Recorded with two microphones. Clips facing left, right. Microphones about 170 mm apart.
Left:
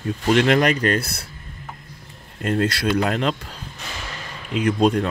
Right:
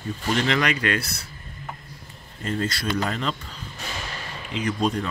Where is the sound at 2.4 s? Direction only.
65° left (ahead or behind).